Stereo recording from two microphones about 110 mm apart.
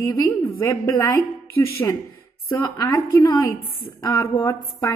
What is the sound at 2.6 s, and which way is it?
Speech, 30° left (ahead or behind).